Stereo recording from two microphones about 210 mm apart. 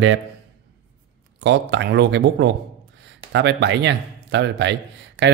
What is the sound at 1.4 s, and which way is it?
Speech, 60° right (ahead or behind).